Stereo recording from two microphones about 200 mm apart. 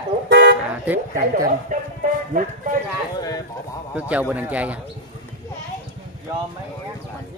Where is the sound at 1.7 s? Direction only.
40° right (ahead or behind).